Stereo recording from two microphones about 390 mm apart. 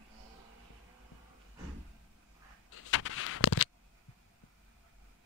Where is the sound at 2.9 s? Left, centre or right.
Left.